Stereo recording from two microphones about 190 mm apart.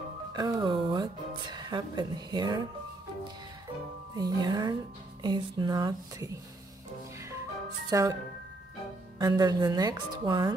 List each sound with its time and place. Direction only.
0.3 s speech: 20° right (ahead or behind)
4.1 s speech: 20° right (ahead or behind)
7.9 s speech: 15° right (ahead or behind)
9.2 s speech: 20° right (ahead or behind)